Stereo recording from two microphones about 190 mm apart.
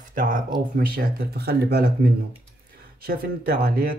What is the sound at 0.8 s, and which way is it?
Speech, 55° right (ahead or behind).